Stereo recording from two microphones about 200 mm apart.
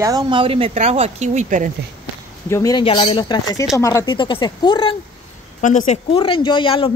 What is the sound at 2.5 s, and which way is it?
A man's voice, 20° left (ahead or behind).